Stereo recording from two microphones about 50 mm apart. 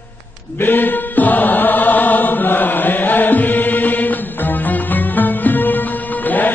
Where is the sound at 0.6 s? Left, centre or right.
Left.